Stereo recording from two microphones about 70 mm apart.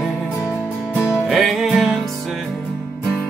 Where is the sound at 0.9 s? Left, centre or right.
Left.